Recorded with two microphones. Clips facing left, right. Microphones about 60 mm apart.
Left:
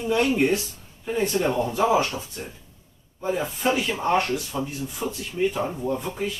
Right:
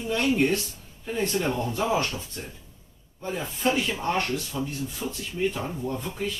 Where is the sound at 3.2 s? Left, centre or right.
Centre.